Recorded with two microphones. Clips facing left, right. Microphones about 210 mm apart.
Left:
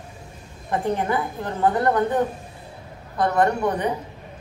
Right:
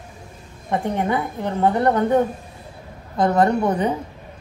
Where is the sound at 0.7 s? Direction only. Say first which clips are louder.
Right 1 dB; 20° right (ahead or behind).